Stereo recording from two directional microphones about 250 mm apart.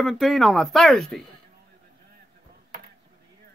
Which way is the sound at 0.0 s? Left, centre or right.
Centre.